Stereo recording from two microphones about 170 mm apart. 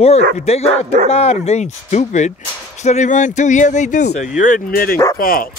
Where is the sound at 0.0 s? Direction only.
35° left (ahead or behind).